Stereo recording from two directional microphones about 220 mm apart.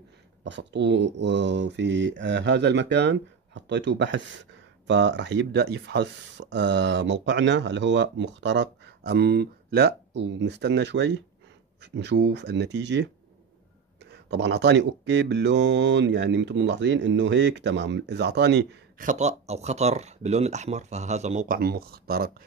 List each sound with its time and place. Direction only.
0.4 s speech: 55° right (ahead or behind)
14.1 s speech: 50° right (ahead or behind)
19.0 s speech: 30° right (ahead or behind)